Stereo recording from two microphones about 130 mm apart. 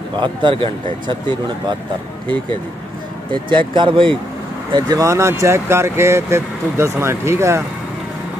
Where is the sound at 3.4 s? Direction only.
40° right (ahead or behind).